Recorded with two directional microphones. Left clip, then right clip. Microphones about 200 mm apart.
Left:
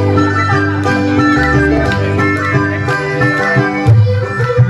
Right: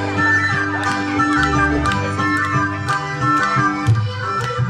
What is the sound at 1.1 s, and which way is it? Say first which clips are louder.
Music: left 4 dB; 50° left (ahead or behind).